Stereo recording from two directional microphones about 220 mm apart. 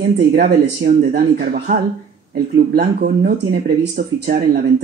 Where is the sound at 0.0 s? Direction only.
45° right (ahead or behind).